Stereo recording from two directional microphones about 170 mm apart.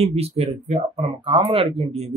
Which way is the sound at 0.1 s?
35° right (ahead or behind).